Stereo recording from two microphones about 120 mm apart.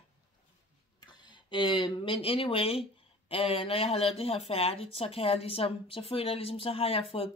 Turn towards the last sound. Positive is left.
turn(degrees=50)  # may be behind; listen again after turning